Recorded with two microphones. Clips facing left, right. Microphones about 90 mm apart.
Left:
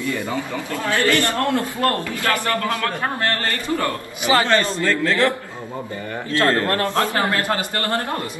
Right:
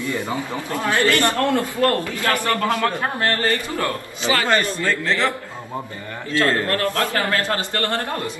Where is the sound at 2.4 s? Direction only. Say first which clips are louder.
Right 2 dB; 25° right (ahead or behind).